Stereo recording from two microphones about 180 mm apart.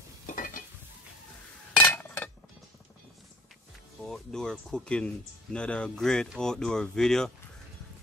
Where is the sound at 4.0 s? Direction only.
5° left (ahead or behind).